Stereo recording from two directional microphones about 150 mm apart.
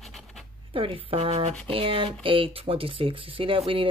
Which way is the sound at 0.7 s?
35° right (ahead or behind).